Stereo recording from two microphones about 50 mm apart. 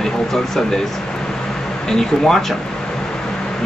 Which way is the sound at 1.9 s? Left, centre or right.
Centre.